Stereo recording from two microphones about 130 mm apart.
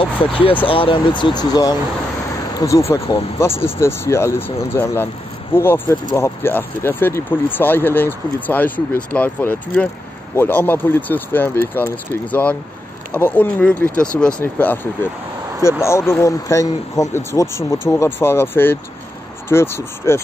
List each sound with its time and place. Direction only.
0.0 s speech: 45° left (ahead or behind); by 2.8 s 25° left (ahead or behind)
3.8 s speech: 20° left (ahead or behind)